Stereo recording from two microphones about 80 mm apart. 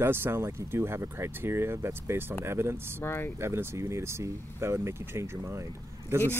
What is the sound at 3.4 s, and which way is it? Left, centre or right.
Speech, right.